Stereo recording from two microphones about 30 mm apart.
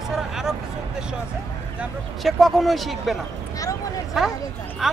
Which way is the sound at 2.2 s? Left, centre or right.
Centre.